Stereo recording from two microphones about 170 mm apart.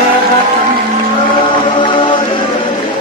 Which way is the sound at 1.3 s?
30° left (ahead or behind).